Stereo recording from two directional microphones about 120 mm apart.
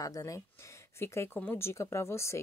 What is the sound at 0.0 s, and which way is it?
Speech, 30° left (ahead or behind).